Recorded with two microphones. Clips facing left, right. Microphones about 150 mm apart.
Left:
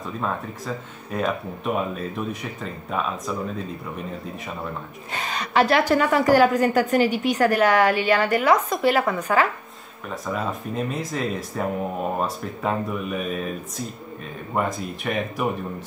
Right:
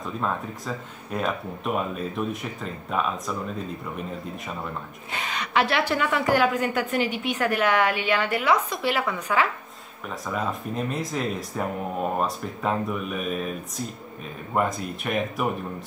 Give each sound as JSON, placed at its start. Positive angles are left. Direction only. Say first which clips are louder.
{"t": 0.0, "sound": "speech", "louder": "left 1 dB", "side_deg": 0}
{"t": 5.2, "sound": "a woman's voice", "louder": "left 4 dB", "side_deg": 35}
{"t": 10.0, "sound": "speech", "louder": "left 1 dB", "side_deg": 0}